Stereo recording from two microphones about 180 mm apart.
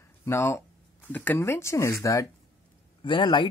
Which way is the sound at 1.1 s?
10° left (ahead or behind).